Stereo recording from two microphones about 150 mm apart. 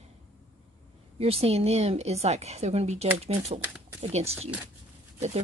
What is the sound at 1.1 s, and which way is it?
Speech, 40° right (ahead or behind).